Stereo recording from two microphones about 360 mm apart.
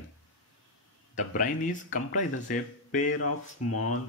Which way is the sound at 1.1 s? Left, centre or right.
Left.